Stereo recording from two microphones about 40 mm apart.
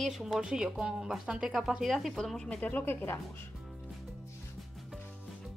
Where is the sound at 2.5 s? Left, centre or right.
Left.